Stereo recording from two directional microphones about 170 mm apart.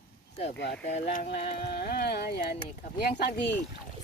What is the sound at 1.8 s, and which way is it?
Speech, 70° left (ahead or behind).